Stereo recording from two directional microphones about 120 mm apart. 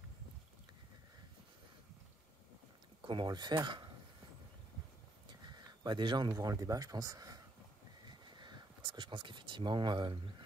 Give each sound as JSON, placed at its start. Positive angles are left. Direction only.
{"t": 3.0, "sound": "speech", "side_deg": -40}
{"t": 5.4, "sound": "speech", "side_deg": -35}